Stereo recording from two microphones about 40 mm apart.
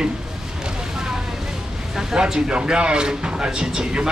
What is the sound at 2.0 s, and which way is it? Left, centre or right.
Speech, centre.